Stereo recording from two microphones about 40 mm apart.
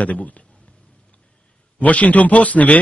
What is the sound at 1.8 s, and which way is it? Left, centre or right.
Speech, left.